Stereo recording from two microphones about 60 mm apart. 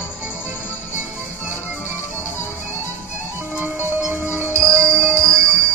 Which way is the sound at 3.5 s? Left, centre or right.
Right.